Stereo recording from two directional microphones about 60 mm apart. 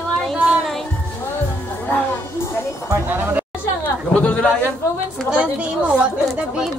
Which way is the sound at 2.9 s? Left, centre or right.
Right.